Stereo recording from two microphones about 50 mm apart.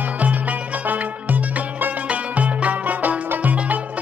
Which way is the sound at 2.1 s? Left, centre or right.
Right.